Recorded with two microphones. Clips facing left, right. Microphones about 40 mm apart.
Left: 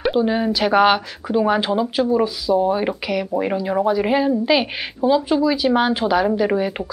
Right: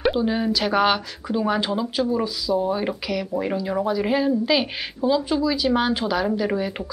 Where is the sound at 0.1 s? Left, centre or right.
Centre.